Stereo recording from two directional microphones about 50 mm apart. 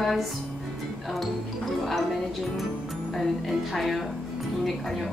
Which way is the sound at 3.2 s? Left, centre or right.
Centre.